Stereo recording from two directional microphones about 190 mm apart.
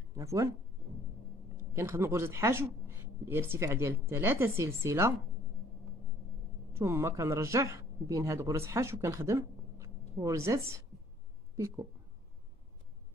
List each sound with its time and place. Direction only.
0.1 s speech: 15° right (ahead or behind)
1.7 s speech: 15° right (ahead or behind)
6.7 s a woman's voice: 15° right (ahead or behind)